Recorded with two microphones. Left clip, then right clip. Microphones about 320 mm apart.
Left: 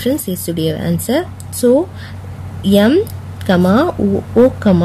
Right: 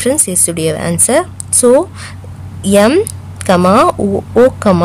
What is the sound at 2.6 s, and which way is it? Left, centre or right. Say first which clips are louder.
Speech: right 3 dB; right.